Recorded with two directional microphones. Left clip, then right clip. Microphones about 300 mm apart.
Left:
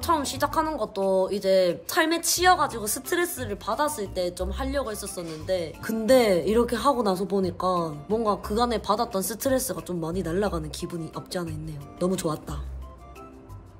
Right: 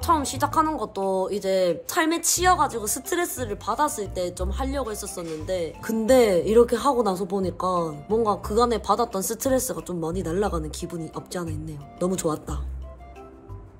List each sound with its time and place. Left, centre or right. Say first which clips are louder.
0.0 s a woman's voice: right 2 dB; centre